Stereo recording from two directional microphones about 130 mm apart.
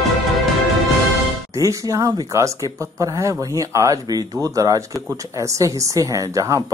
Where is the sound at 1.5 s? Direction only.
25° right (ahead or behind).